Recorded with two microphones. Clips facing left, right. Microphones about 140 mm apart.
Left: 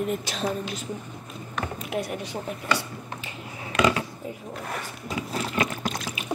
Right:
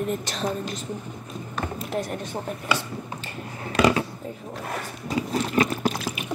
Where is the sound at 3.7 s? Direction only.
35° right (ahead or behind).